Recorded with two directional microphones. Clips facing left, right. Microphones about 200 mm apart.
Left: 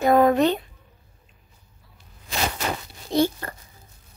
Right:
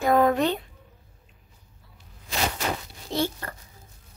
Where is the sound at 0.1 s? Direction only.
20° left (ahead or behind).